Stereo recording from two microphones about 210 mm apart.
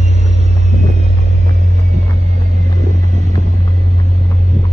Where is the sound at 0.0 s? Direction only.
30° right (ahead or behind).